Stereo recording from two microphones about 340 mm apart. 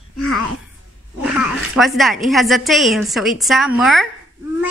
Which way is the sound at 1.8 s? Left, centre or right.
Centre.